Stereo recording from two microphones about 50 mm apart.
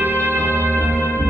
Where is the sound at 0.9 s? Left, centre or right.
Left.